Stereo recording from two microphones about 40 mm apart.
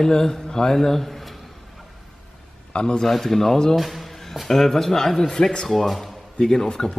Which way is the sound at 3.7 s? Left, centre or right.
Centre.